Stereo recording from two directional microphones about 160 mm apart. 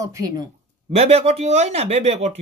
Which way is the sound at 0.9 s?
40° right (ahead or behind).